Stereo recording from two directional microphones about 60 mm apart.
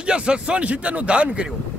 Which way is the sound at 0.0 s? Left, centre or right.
Centre.